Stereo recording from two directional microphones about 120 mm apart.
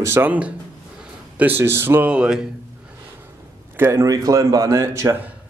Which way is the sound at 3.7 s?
20° right (ahead or behind).